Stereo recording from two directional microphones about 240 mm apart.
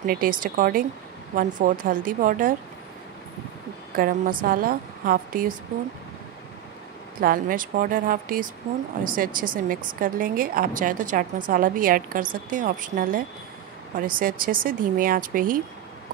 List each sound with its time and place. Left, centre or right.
0.0 s a woman's voice: right
3.9 s a woman's voice: right
7.2 s a woman's voice: right